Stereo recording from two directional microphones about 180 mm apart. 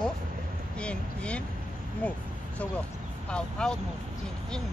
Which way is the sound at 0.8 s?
5° left (ahead or behind).